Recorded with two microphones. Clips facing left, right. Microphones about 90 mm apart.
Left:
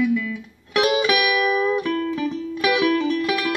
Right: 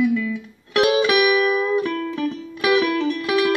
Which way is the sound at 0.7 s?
15° left (ahead or behind).